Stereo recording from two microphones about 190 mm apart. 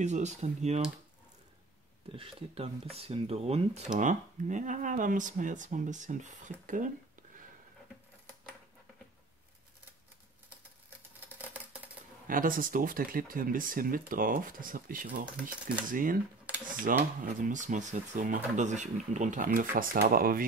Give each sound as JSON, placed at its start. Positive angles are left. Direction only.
{"t": 0.0, "sound": "speech", "side_deg": -40}
{"t": 2.1, "sound": "speech", "side_deg": -30}
{"t": 11.1, "sound": "a sound", "side_deg": -10}
{"t": 12.3, "sound": "speech", "side_deg": -45}